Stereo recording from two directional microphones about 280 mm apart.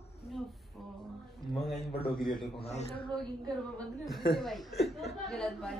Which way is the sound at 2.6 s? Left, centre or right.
Left.